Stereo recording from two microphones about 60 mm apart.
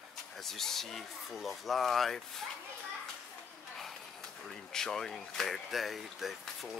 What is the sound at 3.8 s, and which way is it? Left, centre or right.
Speech, centre.